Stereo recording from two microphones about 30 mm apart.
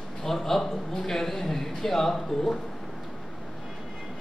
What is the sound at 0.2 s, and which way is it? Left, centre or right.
A man's voice, centre.